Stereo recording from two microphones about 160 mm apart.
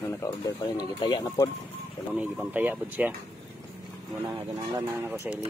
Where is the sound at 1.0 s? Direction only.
25° left (ahead or behind).